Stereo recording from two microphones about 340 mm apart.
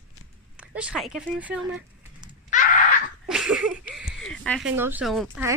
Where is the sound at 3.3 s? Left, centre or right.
Centre.